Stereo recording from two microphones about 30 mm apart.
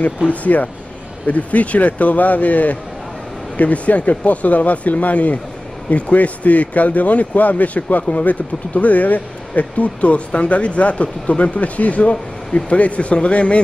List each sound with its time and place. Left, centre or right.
0.0 s speech: left